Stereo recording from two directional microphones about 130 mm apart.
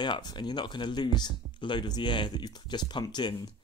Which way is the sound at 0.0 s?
35° left (ahead or behind).